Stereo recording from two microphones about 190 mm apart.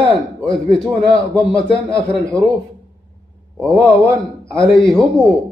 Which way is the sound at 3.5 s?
5° left (ahead or behind).